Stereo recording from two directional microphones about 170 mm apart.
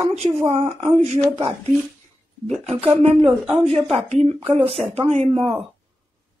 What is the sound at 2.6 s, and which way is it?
Speech, 35° right (ahead or behind).